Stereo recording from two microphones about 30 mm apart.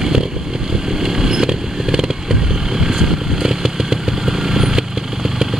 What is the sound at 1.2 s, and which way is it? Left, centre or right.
Vehicle, right.